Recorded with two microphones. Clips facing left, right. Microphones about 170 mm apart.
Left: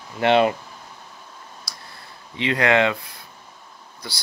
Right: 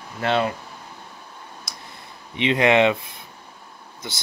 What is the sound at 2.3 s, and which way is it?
Speech, 20° right (ahead or behind).